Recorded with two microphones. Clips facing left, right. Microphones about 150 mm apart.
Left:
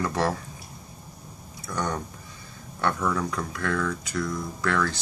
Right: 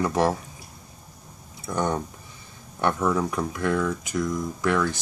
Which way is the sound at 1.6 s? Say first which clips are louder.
Right 4 dB; 25° right (ahead or behind).